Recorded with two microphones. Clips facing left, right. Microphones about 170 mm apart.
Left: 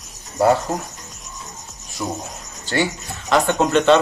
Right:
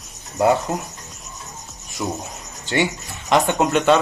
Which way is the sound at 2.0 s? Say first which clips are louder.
Even; 15° right (ahead or behind).